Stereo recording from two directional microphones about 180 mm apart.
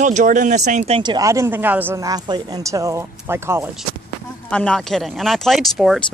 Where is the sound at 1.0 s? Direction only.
20° right (ahead or behind).